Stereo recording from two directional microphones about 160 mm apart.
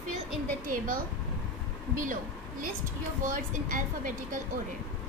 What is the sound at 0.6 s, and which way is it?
A woman's voice, 55° right (ahead or behind).